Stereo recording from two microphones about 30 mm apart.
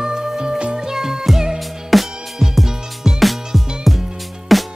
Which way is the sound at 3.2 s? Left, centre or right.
Centre.